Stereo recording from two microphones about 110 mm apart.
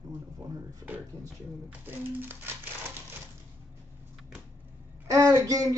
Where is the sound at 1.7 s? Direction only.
15° right (ahead or behind).